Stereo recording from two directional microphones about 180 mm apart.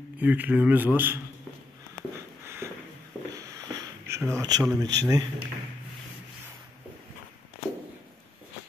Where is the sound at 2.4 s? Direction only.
15° right (ahead or behind).